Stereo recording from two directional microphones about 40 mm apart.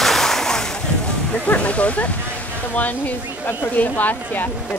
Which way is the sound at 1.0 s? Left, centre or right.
Left.